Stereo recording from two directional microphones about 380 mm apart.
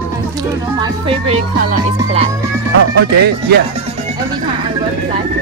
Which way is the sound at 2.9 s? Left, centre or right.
Right.